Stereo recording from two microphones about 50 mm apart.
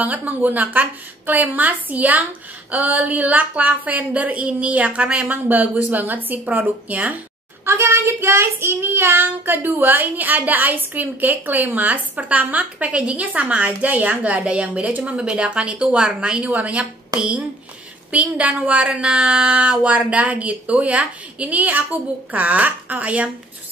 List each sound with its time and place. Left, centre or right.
0.0 s child singing: right
2.7 s a woman's voice: right
5.9 s child singing: right
7.6 s child singing: right
13.7 s a woman's voice: right
20.1 s child singing: right